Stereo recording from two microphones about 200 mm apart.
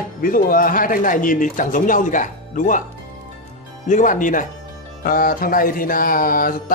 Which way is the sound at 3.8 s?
40° left (ahead or behind).